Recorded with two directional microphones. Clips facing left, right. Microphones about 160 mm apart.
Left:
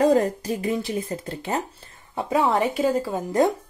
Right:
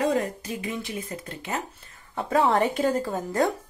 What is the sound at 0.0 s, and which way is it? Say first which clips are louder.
Speech: left 6 dB; 40° left (ahead or behind).